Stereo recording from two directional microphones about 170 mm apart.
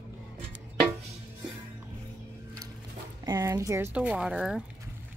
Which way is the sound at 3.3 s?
20° right (ahead or behind).